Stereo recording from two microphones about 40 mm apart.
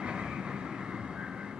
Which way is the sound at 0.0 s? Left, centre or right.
Right.